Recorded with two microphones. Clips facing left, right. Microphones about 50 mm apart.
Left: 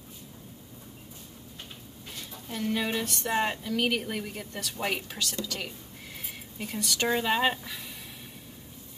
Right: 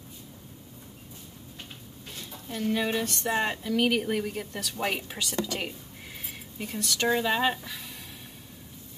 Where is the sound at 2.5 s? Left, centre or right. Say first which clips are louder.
Right 2 dB; centre; by 5.7 s right.